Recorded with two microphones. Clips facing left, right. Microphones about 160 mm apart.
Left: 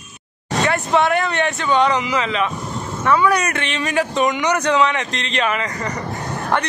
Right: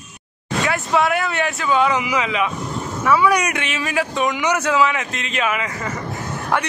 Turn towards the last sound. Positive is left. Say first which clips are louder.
# left 1 dB
turn(degrees=-10)  # may be behind; listen again after turning